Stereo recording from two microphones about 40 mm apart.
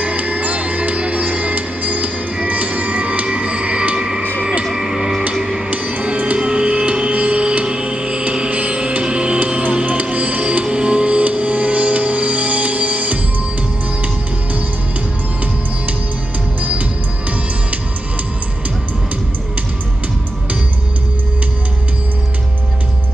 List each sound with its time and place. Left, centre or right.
0.0 s music: right; by 5.6 s centre
5.7 s music: right
9.8 s music: right
10.6 s music: right